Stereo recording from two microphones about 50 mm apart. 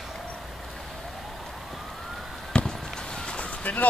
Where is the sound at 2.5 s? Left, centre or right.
Left.